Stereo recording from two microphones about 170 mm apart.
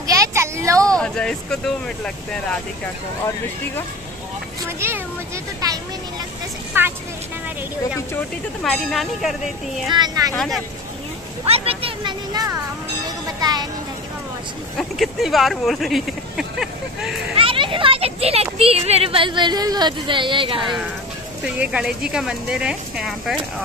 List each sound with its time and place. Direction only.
0.0 s a sound: 20° right (ahead or behind)
0.9 s speech: 5° left (ahead or behind)
4.6 s speech: 15° right (ahead or behind)
6.7 s speech: 15° right (ahead or behind)
8.6 s speech: centre (ahead or behind)
9.9 s speech: 25° right (ahead or behind)
10.3 s speech: 5° left (ahead or behind)
11.4 s speech: 35° right (ahead or behind)
13.4 s music: 25° right (ahead or behind)
14.8 s speech: centre (ahead or behind)
17.4 s speech: 30° right (ahead or behind)
21.5 s speech: 5° right (ahead or behind)